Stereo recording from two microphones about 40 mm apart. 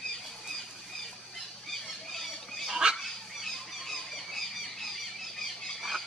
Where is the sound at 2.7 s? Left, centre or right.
Centre.